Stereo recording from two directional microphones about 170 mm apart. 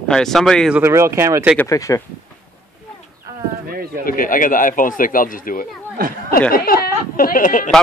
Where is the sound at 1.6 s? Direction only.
20° left (ahead or behind).